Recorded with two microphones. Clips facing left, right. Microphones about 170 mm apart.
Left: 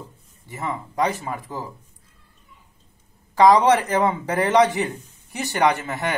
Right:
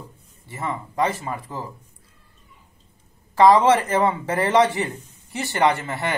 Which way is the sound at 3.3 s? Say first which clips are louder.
Even; 15° left (ahead or behind).